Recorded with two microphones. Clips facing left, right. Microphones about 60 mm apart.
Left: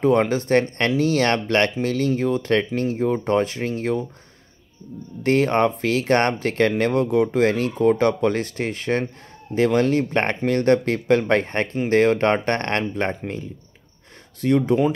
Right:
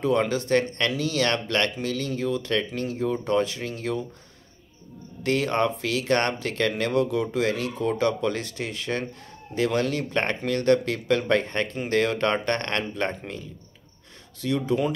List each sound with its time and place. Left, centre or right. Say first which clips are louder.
0.0 s speech: left 5 dB; left
5.2 s speech: left 5 dB; left
14.4 s speech: left 6 dB; left